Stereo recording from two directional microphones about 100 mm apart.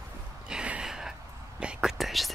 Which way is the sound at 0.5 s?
10° right (ahead or behind).